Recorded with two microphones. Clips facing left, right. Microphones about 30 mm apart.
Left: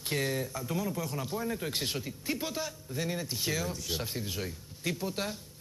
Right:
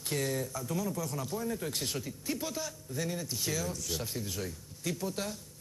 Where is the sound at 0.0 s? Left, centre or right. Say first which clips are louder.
Left 1 dB; left.